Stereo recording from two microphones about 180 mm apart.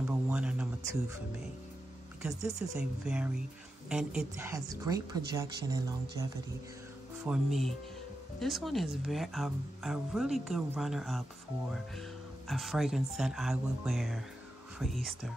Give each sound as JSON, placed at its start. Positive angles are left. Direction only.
{"t": 0.3, "sound": "a sound", "side_deg": -5}
{"t": 2.2, "sound": "a woman's voice", "side_deg": -5}
{"t": 4.5, "sound": "speech", "side_deg": -20}
{"t": 7.2, "sound": "a woman's voice", "side_deg": 0}
{"t": 12.4, "sound": "a woman's voice", "side_deg": 0}